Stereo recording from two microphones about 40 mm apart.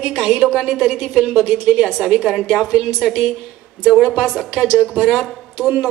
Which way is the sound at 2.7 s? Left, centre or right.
Centre.